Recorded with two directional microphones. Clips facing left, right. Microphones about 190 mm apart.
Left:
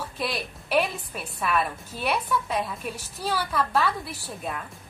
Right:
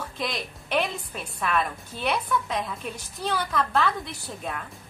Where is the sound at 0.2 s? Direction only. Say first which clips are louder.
Left 1 dB; 5° left (ahead or behind).